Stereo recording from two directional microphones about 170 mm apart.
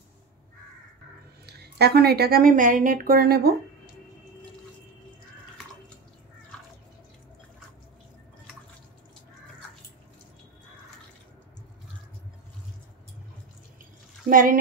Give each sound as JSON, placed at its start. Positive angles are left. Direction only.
{"t": 1.4, "sound": "a woman's voice", "side_deg": -70}
{"t": 14.3, "sound": "speech", "side_deg": -55}